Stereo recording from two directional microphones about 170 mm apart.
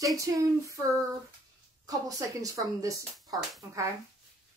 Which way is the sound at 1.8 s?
20° right (ahead or behind).